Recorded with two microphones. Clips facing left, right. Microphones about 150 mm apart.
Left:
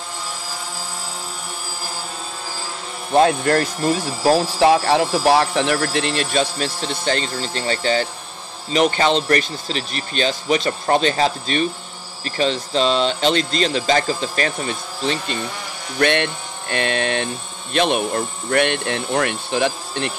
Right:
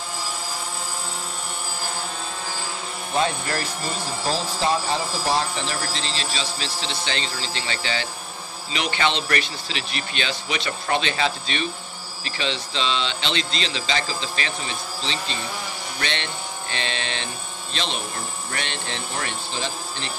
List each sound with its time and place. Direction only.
3.2 s a man's voice: 60° left (ahead or behind)